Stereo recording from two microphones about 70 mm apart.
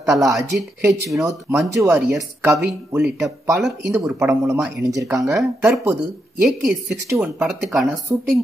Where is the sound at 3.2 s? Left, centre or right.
Right.